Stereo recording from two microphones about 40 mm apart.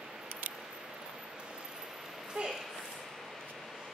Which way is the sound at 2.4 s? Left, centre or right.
Centre.